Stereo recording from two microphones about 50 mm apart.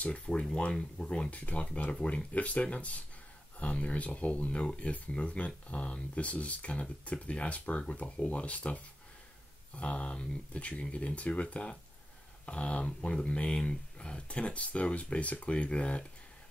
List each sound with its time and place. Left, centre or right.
0.0 s speech: left